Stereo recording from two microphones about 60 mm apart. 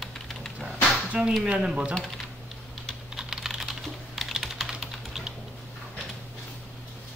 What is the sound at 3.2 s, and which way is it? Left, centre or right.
Typing, centre.